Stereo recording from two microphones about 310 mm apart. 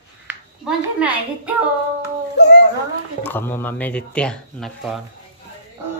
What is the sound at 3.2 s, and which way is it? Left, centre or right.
Speech, centre.